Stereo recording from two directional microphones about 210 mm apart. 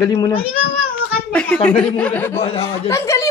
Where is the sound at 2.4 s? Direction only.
30° left (ahead or behind).